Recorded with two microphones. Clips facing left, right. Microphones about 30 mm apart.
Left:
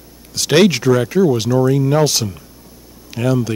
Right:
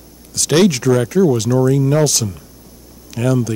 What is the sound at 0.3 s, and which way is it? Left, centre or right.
A man's voice, left.